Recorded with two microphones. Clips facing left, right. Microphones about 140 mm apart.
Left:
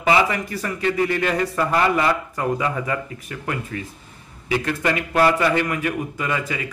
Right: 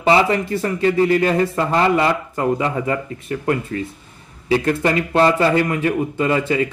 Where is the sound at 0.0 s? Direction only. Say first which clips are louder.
Right 4 dB; 30° right (ahead or behind).